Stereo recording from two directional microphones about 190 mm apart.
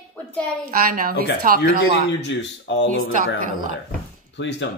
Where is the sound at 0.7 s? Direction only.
50° right (ahead or behind).